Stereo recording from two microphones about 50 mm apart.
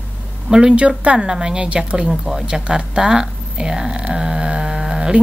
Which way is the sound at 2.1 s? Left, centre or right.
Centre.